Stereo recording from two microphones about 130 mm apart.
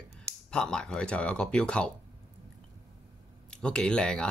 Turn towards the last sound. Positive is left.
turn(degrees=5)  # may be behind; listen again after turning